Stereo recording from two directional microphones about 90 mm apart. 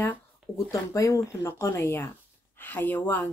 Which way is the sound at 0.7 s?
35° left (ahead or behind).